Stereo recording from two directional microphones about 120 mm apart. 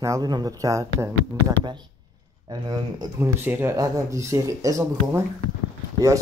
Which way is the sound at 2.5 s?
35° right (ahead or behind).